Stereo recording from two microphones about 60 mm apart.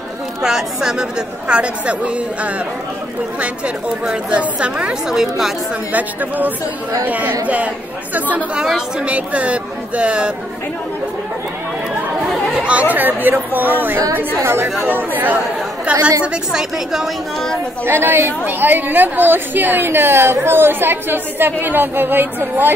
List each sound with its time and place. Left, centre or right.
0.4 s a woman's voice: centre
4.0 s a woman's voice: centre
5.1 s a woman's voice: centre
5.9 s speech: right
8.5 s a woman's voice: centre
9.0 s speech: right
12.5 s chatter: right
12.9 s a woman's voice: right
14.1 s a woman's voice: right
14.9 s a woman's voice: right
15.8 s chatter: right
16.5 s a woman's voice: centre
17.8 s a woman's voice: right